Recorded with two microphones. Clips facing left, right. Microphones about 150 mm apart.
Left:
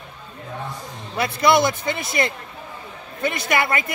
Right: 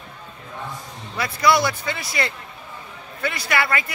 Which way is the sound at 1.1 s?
25° left (ahead or behind).